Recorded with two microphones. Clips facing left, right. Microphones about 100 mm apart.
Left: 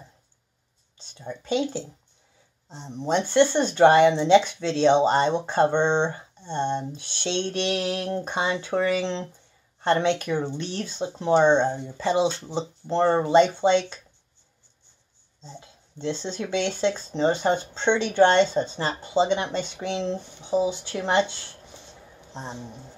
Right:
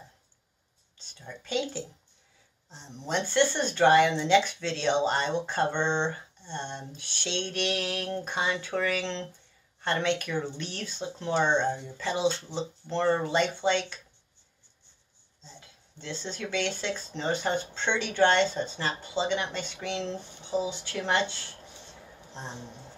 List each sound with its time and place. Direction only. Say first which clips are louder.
0.9 s speech: left 8 dB; 20° left (ahead or behind)
15.6 s speech: left 13 dB; 25° left (ahead or behind)